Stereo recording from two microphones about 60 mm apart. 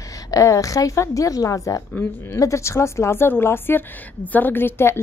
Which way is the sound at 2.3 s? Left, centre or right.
Left.